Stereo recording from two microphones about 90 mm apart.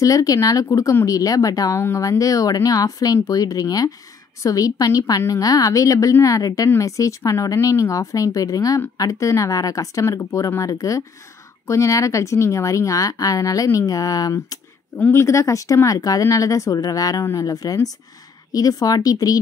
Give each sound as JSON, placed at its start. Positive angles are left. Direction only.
{"t": 0.0, "sound": "speech", "side_deg": 40}
{"t": 15.0, "sound": "speech", "side_deg": 25}